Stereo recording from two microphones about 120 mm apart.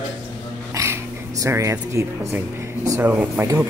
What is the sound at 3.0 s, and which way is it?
Speech, 15° right (ahead or behind).